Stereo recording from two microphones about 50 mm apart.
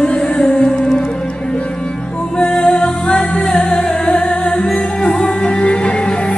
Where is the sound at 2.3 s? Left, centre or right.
Left.